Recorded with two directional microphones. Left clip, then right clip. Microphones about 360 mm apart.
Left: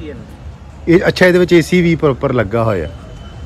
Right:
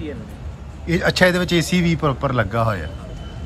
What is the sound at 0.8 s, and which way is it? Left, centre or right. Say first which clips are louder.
Speech: left 6 dB; centre.